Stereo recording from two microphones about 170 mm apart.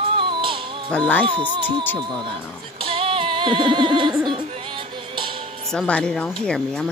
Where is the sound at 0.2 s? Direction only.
30° right (ahead or behind).